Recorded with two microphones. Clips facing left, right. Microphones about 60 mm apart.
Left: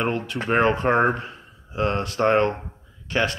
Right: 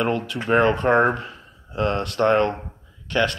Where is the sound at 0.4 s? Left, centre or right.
Left.